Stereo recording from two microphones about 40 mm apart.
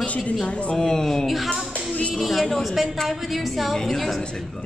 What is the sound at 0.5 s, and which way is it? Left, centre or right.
Speech, left.